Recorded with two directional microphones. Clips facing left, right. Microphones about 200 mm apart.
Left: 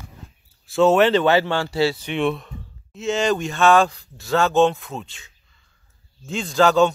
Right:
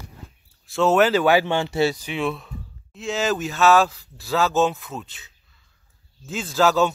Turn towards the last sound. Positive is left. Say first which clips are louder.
# left 3 dB
turn(degrees=-5)  # may be behind; listen again after turning